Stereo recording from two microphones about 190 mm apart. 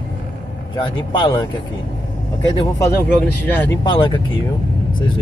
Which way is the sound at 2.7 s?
15° left (ahead or behind).